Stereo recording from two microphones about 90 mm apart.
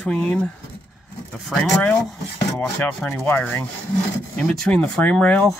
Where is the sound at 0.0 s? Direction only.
10° left (ahead or behind).